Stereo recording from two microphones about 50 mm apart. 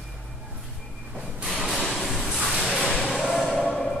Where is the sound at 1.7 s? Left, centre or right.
Centre.